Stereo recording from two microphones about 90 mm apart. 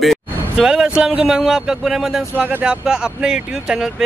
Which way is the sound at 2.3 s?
20° right (ahead or behind).